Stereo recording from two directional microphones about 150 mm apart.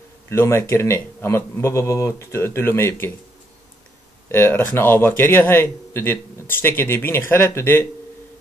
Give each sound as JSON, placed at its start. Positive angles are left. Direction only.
{"t": 0.3, "sound": "a man's voice", "side_deg": 15}
{"t": 4.3, "sound": "a man's voice", "side_deg": 15}